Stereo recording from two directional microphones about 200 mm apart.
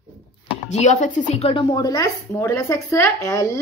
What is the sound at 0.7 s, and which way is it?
Speech, 35° left (ahead or behind).